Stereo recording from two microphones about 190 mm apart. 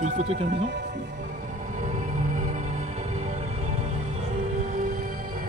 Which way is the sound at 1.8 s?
40° right (ahead or behind).